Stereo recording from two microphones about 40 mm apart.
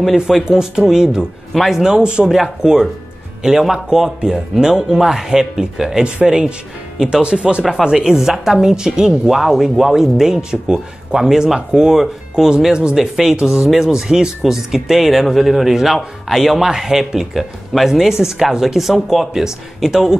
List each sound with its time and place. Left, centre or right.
0.0 s speech: centre
1.5 s speech: centre
1.8 s speech: centre
2.2 s speech: centre
2.6 s speech: centre
6.0 s speech: right
13.4 s speech: right
13.7 s speech: centre